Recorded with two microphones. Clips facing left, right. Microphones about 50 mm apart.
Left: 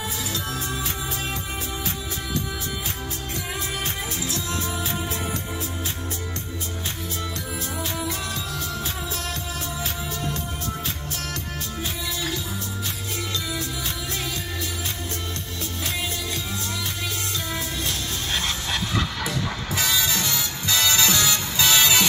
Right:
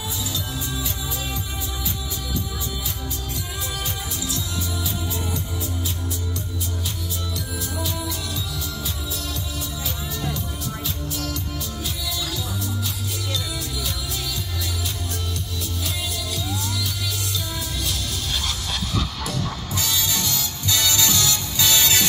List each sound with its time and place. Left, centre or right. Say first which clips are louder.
17.8 s music: even; left; by 21.9 s centre